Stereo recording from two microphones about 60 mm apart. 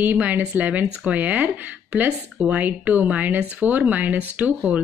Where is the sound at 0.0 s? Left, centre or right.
Right.